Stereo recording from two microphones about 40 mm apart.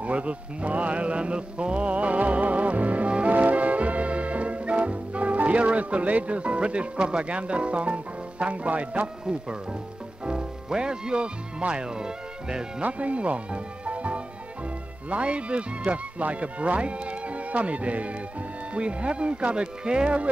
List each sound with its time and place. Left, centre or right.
0.0 s mantra: right
3.3 s music: right
9.2 s speech: centre
12.8 s speech: right
15.9 s mantra: right
18.7 s speech: right